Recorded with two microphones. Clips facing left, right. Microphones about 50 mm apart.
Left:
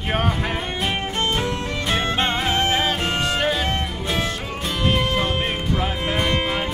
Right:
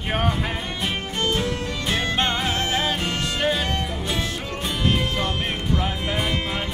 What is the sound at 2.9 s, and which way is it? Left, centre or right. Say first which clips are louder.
Music: left 3 dB; centre.